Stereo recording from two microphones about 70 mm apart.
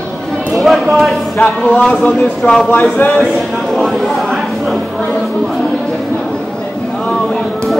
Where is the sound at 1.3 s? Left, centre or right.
Centre.